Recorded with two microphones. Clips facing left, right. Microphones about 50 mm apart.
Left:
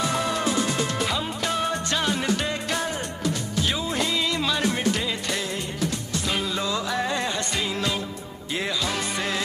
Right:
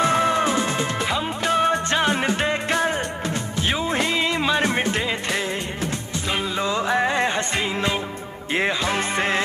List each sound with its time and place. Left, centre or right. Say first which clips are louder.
0.0 s music: right 6 dB; right
6.6 s music: right 5 dB; right